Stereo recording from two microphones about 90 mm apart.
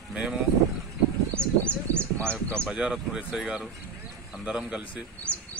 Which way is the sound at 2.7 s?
10° right (ahead or behind).